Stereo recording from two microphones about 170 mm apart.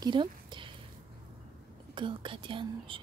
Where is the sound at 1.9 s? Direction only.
30° right (ahead or behind).